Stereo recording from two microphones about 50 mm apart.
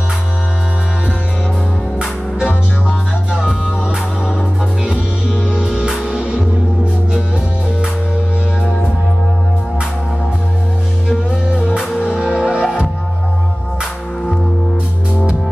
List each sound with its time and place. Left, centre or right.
2.0 s music: right
4.8 s music: centre
11.2 s music: right